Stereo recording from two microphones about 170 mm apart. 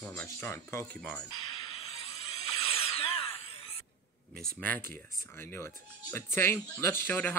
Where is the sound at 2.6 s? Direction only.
35° left (ahead or behind).